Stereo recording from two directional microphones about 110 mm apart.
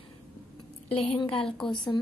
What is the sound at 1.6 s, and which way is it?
Speech, 5° left (ahead or behind).